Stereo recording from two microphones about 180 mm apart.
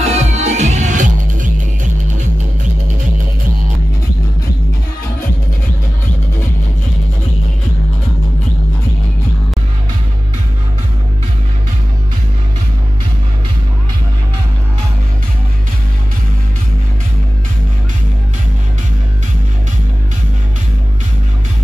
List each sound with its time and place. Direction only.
0.0 s music: 40° right (ahead or behind)